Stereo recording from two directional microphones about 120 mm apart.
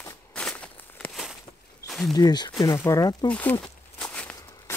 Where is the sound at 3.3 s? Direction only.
15° left (ahead or behind).